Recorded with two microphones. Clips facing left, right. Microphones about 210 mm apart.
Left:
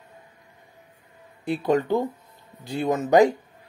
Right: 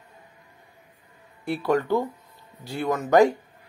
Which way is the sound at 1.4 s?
20° left (ahead or behind).